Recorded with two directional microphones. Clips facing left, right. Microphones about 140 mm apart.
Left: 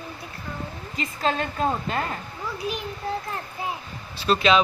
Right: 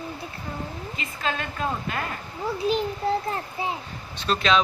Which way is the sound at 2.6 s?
30° right (ahead or behind).